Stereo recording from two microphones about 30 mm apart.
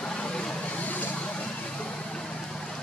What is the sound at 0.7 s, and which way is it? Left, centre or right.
Vehicle, left.